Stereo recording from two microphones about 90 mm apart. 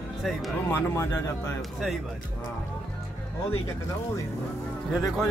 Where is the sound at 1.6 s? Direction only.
Centre (ahead or behind).